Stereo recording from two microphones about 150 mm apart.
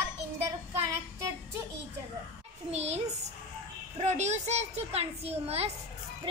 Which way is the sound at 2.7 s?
45° right (ahead or behind).